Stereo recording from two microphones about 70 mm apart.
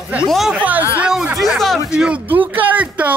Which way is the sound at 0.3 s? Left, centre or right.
Centre.